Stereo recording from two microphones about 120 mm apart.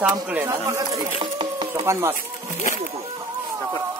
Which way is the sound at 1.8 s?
20° right (ahead or behind).